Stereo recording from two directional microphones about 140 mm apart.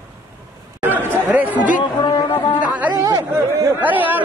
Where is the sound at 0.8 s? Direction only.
15° right (ahead or behind).